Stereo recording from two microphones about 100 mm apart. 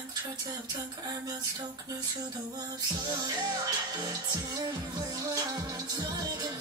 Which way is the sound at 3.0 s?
45° right (ahead or behind).